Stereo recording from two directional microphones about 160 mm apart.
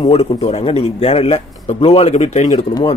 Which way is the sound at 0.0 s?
40° left (ahead or behind).